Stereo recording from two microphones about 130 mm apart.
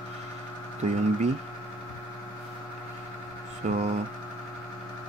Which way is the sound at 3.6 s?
60° right (ahead or behind).